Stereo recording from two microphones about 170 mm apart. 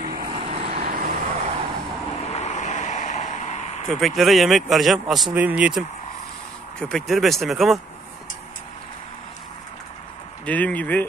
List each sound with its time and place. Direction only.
0.0 s vehicle: 60° right (ahead or behind)
0.3 s vehicle: 35° right (ahead or behind)
0.8 s vehicle: 65° right (ahead or behind)
1.2 s vehicle: 40° right (ahead or behind)
2.3 s a sound: 40° left (ahead or behind)
3.9 s speech: centre (ahead or behind)
10.4 s speech: 10° left (ahead or behind)